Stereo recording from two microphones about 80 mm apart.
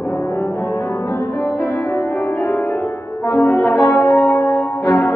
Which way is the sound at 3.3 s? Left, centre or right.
Left.